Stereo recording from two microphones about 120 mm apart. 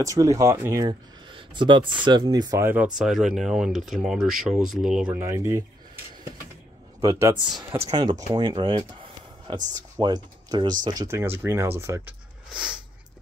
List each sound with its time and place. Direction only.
0.0 s speech: 25° right (ahead or behind)
0.8 s speech: 40° right (ahead or behind)
2.6 s speech: 15° right (ahead or behind)
5.1 s speech: 25° right (ahead or behind)
7.0 s speech: 25° right (ahead or behind)
7.9 s speech: 40° right (ahead or behind)
9.9 s speech: 35° right (ahead or behind)
12.5 s a sound: 10° right (ahead or behind)